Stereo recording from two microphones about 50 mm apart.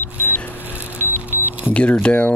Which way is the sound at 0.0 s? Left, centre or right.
Left.